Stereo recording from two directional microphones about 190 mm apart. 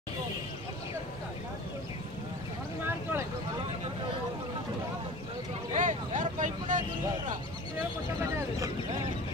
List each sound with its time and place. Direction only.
2.8 s vehicle: 10° right (ahead or behind)
5.7 s vehicle: 40° right (ahead or behind)
8.2 s a sound: 15° right (ahead or behind)